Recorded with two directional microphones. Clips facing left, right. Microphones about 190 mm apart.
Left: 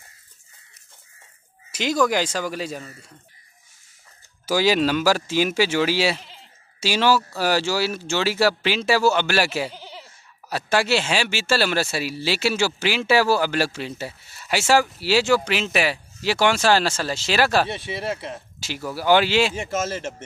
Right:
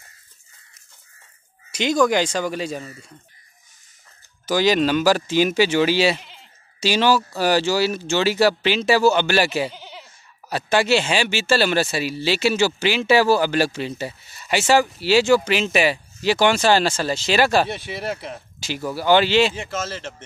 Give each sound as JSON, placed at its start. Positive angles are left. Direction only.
{"t": 1.7, "sound": "speech", "side_deg": 5}
{"t": 4.5, "sound": "speech", "side_deg": 5}
{"t": 9.8, "sound": "bleat", "side_deg": 35}
{"t": 10.5, "sound": "speech", "side_deg": 5}
{"t": 17.6, "sound": "speech", "side_deg": 25}
{"t": 18.1, "sound": "speech", "side_deg": 0}